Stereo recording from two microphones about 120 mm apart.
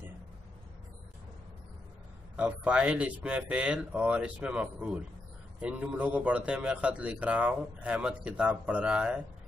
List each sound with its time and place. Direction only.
2.3 s a man's voice: 10° right (ahead or behind)